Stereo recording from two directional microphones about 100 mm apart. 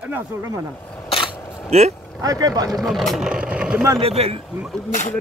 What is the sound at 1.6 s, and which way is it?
Speech, 90° right.